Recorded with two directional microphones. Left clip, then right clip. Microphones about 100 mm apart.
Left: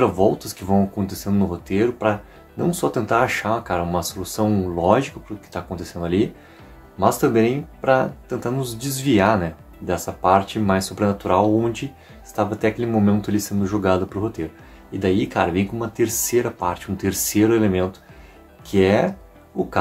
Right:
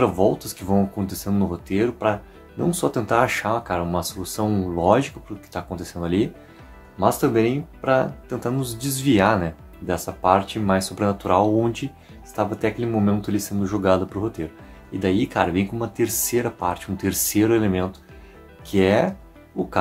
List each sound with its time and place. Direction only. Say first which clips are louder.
0.0 s speech: left 1 dB; 35° right (ahead or behind)
7.0 s speech: left 2 dB; 30° right (ahead or behind)
12.4 s speech: left 2 dB; 25° right (ahead or behind)